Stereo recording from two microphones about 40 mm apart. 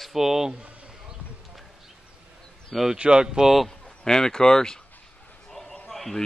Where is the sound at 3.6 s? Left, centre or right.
Centre.